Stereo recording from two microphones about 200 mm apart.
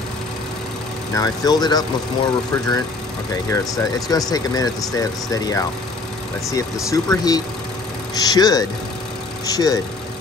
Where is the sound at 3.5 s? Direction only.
15° left (ahead or behind).